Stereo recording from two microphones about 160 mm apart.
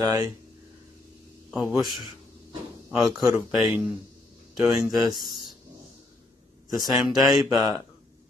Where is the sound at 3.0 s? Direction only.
20° right (ahead or behind).